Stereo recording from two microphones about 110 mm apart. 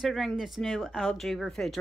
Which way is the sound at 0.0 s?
Centre (ahead or behind).